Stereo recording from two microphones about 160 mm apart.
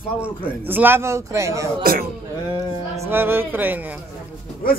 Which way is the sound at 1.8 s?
65° right (ahead or behind).